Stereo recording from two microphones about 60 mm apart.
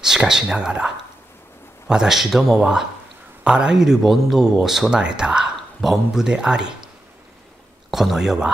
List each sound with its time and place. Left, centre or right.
0.0 s a man's voice: centre
7.9 s speech: centre